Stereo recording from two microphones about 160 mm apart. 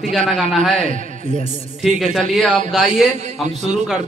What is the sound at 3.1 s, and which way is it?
Speech, 45° right (ahead or behind).